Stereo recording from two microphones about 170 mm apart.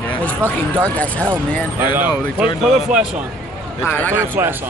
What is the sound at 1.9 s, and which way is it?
Speech, 10° right (ahead or behind).